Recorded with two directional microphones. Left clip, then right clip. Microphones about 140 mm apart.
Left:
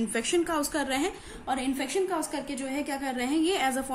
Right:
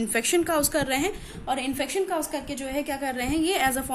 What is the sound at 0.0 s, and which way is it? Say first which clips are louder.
A woman's voice: right 3 dB; 25° right (ahead or behind).